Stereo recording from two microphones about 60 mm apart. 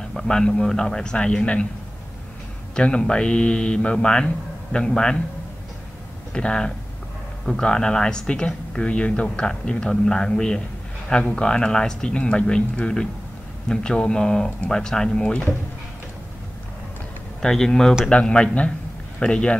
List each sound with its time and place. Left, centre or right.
0.1 s speech: centre
2.7 s speech: centre
6.3 s speech: centre
17.4 s speech: centre